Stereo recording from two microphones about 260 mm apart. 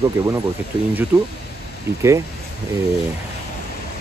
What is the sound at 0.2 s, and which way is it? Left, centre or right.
Speech, centre.